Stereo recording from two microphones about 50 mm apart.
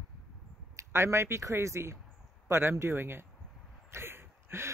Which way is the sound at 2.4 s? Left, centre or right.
Right.